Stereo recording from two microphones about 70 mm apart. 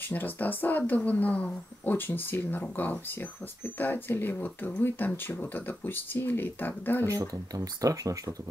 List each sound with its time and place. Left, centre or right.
0.0 s speech: left
7.2 s speech: right